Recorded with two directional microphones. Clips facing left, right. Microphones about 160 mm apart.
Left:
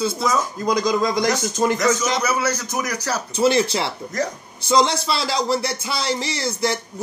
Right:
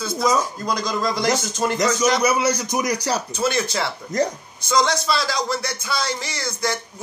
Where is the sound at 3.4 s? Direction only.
30° left (ahead or behind).